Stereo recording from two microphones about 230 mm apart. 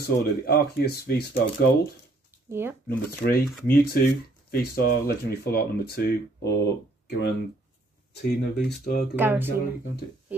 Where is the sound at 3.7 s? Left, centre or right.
Left.